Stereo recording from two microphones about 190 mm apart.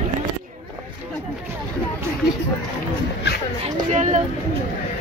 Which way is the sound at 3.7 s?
40° right (ahead or behind).